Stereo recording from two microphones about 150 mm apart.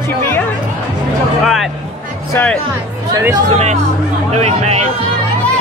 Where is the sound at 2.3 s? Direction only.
10° left (ahead or behind).